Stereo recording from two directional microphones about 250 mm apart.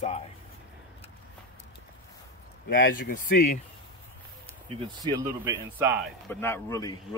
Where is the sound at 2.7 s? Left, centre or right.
Left.